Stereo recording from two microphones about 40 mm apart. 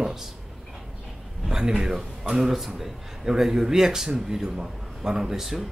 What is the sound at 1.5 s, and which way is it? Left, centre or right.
Speech, centre.